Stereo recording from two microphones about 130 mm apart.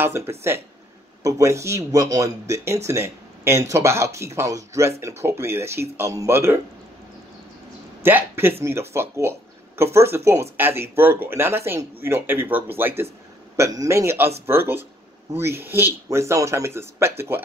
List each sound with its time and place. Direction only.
0.0 s speech: 20° right (ahead or behind)
8.0 s speech: 15° right (ahead or behind)